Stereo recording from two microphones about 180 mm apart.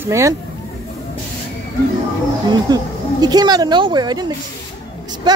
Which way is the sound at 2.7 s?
20° right (ahead or behind).